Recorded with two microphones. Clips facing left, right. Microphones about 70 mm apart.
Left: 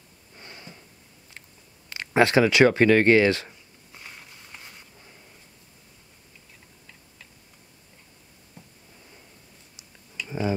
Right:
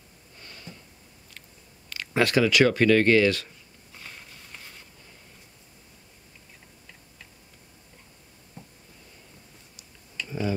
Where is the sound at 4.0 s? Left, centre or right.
Centre.